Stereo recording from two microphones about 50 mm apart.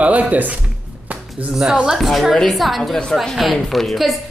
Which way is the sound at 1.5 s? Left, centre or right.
Centre.